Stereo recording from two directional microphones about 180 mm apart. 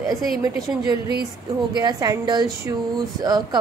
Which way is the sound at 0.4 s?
20° right (ahead or behind).